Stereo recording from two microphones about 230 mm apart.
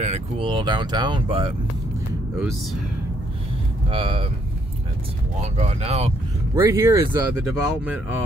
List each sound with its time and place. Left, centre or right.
0.0 s speech: right
3.9 s speech: right
5.4 s speech: right
6.5 s speech: centre